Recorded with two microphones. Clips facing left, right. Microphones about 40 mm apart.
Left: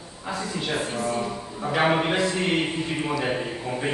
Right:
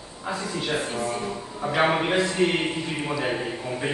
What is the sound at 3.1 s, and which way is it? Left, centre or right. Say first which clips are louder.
Speech: even; centre.